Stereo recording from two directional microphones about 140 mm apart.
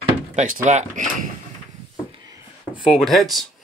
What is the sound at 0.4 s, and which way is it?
Speech, 55° right (ahead or behind).